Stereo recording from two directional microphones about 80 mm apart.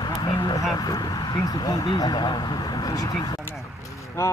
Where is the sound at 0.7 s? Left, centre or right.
Left.